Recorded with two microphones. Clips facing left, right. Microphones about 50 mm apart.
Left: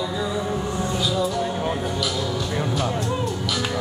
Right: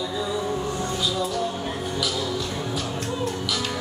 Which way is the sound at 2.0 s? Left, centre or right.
Centre.